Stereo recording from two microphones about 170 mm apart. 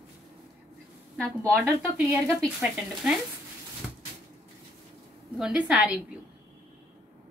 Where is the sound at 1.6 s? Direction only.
15° right (ahead or behind).